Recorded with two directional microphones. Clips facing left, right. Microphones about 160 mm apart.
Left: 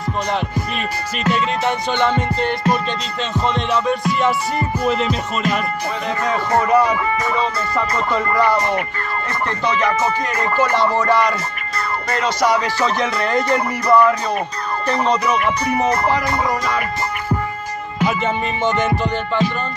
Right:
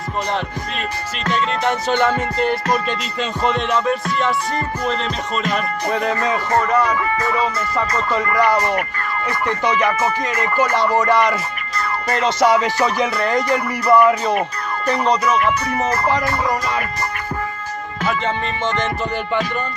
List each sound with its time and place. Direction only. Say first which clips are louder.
1.2 s music: left 1 dB; 5° left (ahead or behind)
6.5 s music: left 3 dB; 15° left (ahead or behind)
7.3 s music: even; 5° right (ahead or behind)
11.0 s music: right 1 dB; 20° right (ahead or behind)
15.3 s speech: even; 20° left (ahead or behind)
18.0 s music: left 2 dB; 10° left (ahead or behind)